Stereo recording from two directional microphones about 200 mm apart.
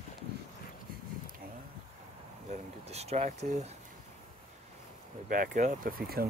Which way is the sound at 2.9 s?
30° right (ahead or behind).